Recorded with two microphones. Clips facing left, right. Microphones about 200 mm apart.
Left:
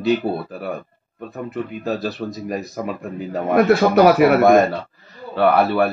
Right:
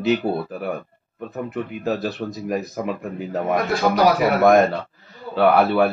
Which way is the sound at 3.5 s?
65° left (ahead or behind).